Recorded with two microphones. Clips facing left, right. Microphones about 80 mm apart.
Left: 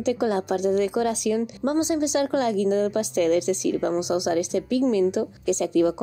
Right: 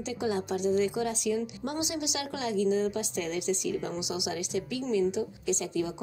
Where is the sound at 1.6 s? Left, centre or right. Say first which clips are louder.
Left 10 dB; left.